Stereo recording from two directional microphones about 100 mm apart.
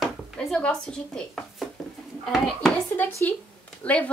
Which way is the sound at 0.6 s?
10° left (ahead or behind).